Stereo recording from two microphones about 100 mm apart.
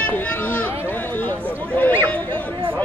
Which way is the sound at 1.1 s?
15° left (ahead or behind).